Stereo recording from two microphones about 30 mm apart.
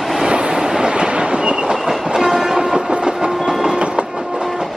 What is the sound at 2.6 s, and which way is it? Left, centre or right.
Train, right.